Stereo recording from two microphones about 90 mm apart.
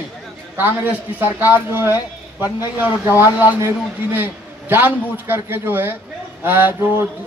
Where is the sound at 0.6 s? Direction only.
20° right (ahead or behind).